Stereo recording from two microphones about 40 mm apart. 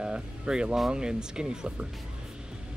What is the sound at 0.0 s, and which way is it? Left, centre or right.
Speech, right.